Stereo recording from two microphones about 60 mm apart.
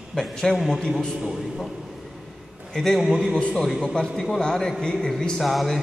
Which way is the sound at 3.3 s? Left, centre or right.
Centre.